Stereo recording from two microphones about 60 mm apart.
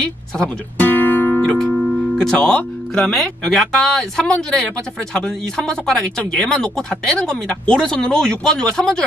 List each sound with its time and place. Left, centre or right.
0.0 s speech: centre
0.8 s music: left
1.4 s speech: centre